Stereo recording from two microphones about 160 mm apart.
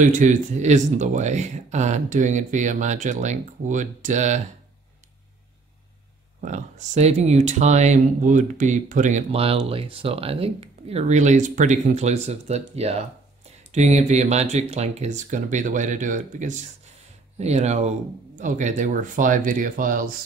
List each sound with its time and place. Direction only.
0.0 s speech: 50° right (ahead or behind)
6.4 s speech: 50° right (ahead or behind)